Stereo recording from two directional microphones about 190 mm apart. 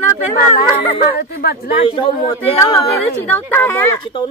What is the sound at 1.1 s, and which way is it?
Speech, 55° left (ahead or behind).